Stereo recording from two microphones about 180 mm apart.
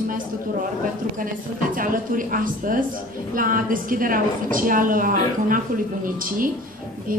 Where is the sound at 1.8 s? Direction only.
50° right (ahead or behind).